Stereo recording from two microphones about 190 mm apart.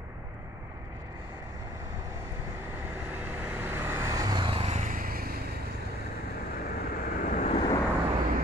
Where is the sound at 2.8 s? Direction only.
10° right (ahead or behind); by 5.3 s 50° right (ahead or behind).